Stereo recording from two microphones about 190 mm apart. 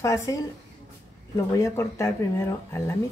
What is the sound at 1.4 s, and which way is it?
Speech, 15° left (ahead or behind).